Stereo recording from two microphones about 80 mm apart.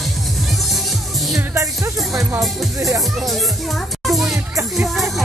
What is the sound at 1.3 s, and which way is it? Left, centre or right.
Music, right.